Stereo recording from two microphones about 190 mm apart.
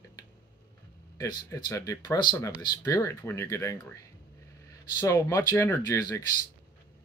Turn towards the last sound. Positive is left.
turn(degrees=15)  # may be behind; listen again after turning